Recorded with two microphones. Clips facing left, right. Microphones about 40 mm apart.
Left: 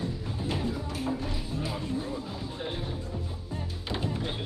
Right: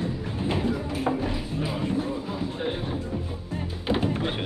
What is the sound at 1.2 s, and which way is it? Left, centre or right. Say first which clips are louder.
Music: right 5 dB; right.